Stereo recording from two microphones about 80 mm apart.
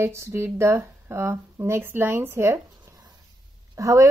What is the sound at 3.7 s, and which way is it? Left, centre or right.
Speech, right.